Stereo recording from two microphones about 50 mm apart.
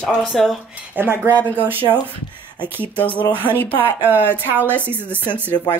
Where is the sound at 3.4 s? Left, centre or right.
Left.